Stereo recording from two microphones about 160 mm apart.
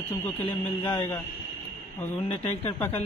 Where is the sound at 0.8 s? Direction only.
25° left (ahead or behind).